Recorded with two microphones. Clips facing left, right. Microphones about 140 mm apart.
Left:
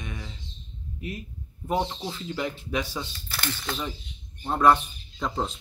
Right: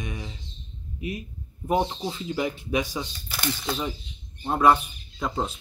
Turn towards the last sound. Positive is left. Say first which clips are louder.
# right 1 dB
turn(degrees=-5)  # may be behind; listen again after turning